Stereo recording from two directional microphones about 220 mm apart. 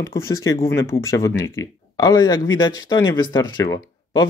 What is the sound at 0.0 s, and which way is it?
Speech, 15° left (ahead or behind).